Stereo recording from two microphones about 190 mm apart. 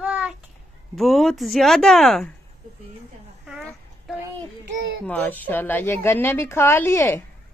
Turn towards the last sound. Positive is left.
turn(degrees=10)  # may be behind; listen again after turning